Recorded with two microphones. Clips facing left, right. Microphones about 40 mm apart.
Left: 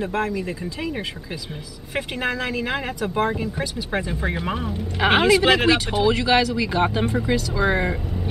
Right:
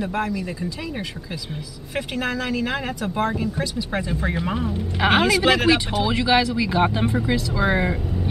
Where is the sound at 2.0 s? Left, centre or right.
Centre.